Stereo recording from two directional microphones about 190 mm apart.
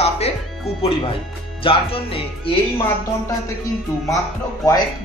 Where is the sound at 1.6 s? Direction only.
30° left (ahead or behind).